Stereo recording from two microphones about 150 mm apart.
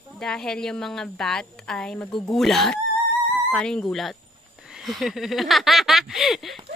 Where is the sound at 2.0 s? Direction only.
30° left (ahead or behind).